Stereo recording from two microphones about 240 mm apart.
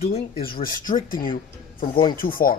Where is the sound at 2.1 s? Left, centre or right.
Left.